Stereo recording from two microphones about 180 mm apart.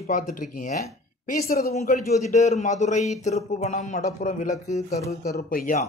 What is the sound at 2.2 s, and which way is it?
Speech, 40° left (ahead or behind).